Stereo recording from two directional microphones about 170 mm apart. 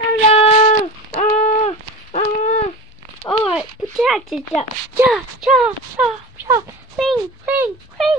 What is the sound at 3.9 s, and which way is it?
Speech, centre (ahead or behind).